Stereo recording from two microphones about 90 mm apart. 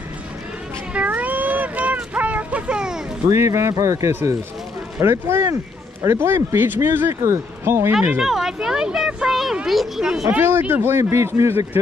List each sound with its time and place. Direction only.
0.9 s a sound: 15° right (ahead or behind)
3.3 s speech: 35° right (ahead or behind)
8.2 s speech: 5° right (ahead or behind)
10.3 s speech: 20° right (ahead or behind)